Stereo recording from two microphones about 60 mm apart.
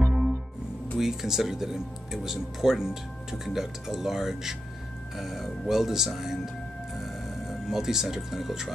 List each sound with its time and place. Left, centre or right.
0.0 s music: centre
0.9 s speech: centre